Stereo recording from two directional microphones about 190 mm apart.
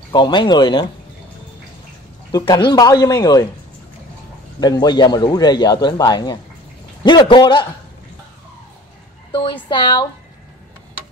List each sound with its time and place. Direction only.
0.1 s a man's voice: 25° left (ahead or behind)
2.3 s a man's voice: 25° left (ahead or behind)
4.6 s a man's voice: 20° left (ahead or behind)
9.3 s a man's voice: 25° left (ahead or behind)